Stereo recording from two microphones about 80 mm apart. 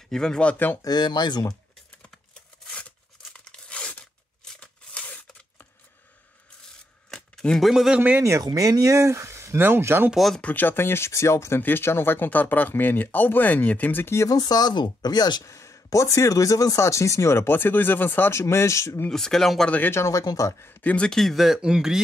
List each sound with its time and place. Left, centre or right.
0.1 s speech: centre
0.8 s speech: left
3.3 s tearing: centre
7.1 s a sound: centre
7.7 s speech: centre
8.2 s speech: right
10.1 s speech: centre
10.4 s speech: left
14.5 s speech: left
15.4 s speech: left
19.0 s speech: centre
19.7 s speech: left
20.0 s speech: left
20.6 s speech: centre